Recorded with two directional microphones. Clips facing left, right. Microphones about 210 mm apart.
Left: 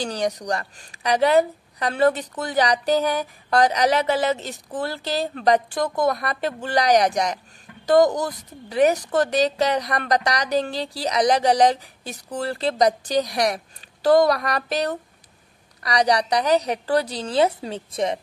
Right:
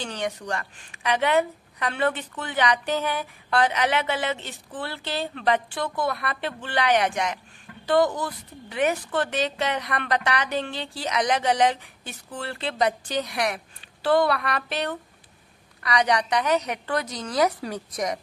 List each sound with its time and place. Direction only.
0.0 s a woman's voice: 35° left (ahead or behind)